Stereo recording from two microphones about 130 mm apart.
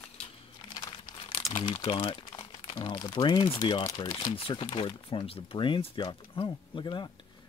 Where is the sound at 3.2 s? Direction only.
40° left (ahead or behind).